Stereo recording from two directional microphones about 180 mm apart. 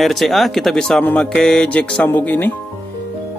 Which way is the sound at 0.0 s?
Centre (ahead or behind).